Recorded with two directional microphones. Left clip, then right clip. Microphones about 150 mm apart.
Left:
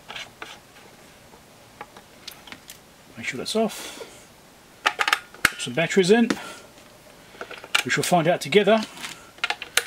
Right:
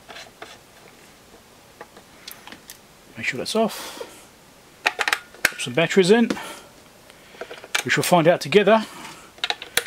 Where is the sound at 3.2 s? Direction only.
25° right (ahead or behind).